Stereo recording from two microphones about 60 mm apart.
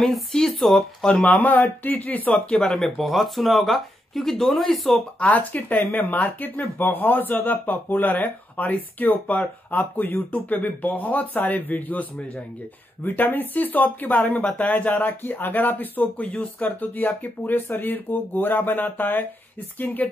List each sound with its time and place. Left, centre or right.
0.0 s speech: centre
1.0 s speech: centre
1.3 s speech: left
2.3 s speech: centre
5.2 s speech: left
5.8 s speech: left